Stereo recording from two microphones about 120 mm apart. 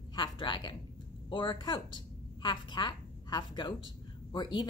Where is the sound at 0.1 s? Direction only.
40° left (ahead or behind).